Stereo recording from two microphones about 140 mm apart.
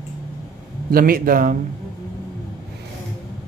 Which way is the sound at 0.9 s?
90° right.